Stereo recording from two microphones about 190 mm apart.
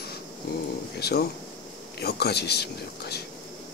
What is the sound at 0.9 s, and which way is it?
Speech, 55° left (ahead or behind).